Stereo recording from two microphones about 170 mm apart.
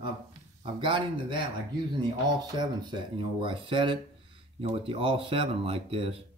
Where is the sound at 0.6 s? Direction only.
30° right (ahead or behind).